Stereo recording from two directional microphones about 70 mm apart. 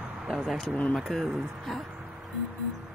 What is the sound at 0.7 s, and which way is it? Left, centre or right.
Speech, left.